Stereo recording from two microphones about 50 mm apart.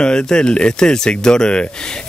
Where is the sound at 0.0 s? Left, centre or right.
Centre.